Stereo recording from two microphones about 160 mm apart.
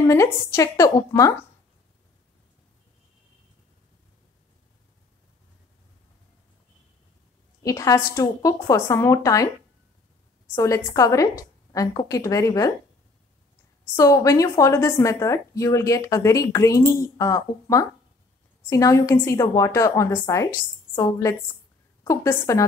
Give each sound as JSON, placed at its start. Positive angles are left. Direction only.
{"t": 0.0, "sound": "a woman's voice", "side_deg": 20}
{"t": 7.6, "sound": "a woman's voice", "side_deg": 20}
{"t": 10.5, "sound": "a woman's voice", "side_deg": 20}
{"t": 13.9, "sound": "a woman's voice", "side_deg": 20}